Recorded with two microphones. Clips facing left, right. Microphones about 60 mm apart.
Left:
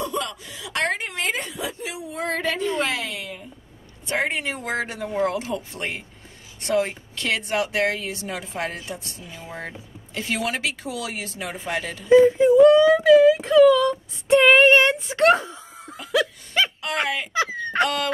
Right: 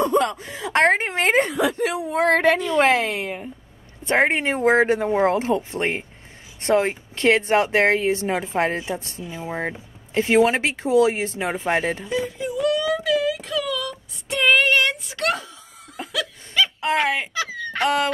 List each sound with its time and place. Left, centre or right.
0.0 s speech: right
1.5 s speech: right
12.1 s speech: left
16.1 s laughter: left
16.8 s speech: right
17.3 s speech: left
17.8 s speech: right